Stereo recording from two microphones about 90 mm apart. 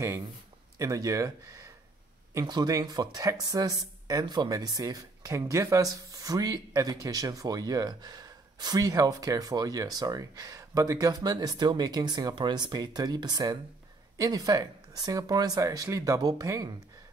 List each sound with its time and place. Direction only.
0.7 s speech: 40° right (ahead or behind)
2.4 s speech: 50° right (ahead or behind)